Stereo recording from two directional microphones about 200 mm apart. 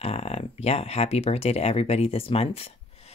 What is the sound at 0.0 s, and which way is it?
Speech, 30° left (ahead or behind).